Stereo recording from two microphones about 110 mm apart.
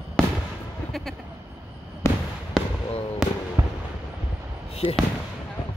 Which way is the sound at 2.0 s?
25° left (ahead or behind).